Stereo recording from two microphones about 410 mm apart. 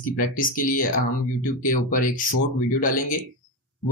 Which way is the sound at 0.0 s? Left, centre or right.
Centre.